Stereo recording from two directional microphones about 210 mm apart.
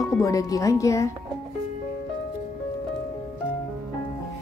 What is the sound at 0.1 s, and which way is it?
Speech, 15° left (ahead or behind).